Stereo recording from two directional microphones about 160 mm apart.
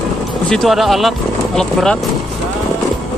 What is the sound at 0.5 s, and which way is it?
Speech, centre (ahead or behind).